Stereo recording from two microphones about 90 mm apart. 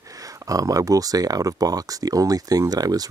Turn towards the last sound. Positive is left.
turn(degrees=-45)  # may be behind; listen again after turning